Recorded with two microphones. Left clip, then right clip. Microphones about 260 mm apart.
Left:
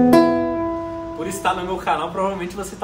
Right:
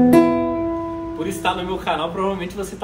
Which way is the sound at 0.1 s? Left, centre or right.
Centre.